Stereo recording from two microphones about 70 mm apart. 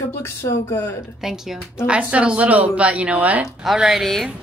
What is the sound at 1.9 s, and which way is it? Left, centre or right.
A woman's voice, centre.